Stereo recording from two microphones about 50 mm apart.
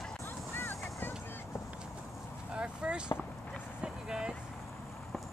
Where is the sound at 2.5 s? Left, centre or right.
Centre.